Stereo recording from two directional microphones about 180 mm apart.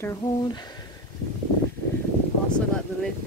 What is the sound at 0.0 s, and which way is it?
Speech, 20° left (ahead or behind).